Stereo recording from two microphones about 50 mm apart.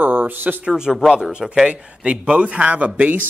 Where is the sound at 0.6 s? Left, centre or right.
Centre.